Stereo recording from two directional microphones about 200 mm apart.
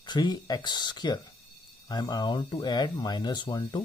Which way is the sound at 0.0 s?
20° left (ahead or behind).